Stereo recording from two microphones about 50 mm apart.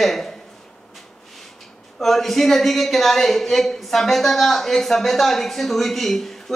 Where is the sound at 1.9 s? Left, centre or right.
Centre.